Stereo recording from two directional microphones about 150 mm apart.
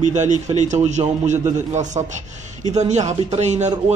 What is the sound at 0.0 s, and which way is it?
A man's voice, 55° right (ahead or behind).